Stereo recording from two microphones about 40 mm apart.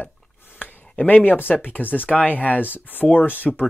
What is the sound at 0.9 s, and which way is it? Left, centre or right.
Speech, left.